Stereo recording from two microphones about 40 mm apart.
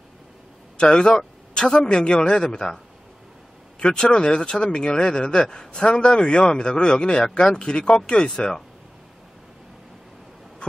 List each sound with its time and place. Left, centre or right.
0.7 s speech: left
3.8 s speech: left